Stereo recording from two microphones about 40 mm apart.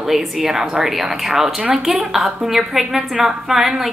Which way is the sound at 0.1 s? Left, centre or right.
Centre.